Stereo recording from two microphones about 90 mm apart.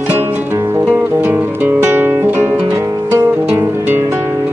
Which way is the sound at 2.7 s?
35° right (ahead or behind).